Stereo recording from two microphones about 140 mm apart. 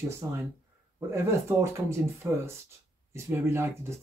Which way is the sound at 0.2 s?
20° right (ahead or behind).